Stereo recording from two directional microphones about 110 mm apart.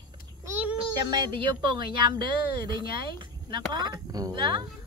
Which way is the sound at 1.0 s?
40° right (ahead or behind).